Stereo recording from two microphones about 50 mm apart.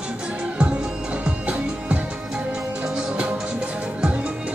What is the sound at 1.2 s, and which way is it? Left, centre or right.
Music, centre.